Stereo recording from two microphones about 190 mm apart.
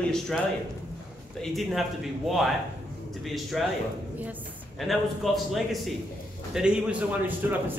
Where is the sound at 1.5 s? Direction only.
Centre (ahead or behind).